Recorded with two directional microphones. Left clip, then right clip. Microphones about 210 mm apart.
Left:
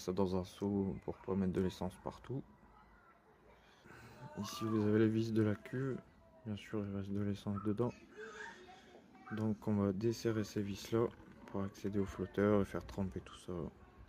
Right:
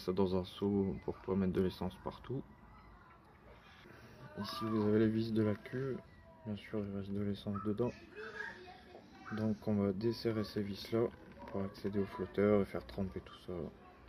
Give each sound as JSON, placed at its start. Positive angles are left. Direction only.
{"t": 0.0, "sound": "speech", "side_deg": 25}
{"t": 4.4, "sound": "speech", "side_deg": 35}
{"t": 9.3, "sound": "speech", "side_deg": 30}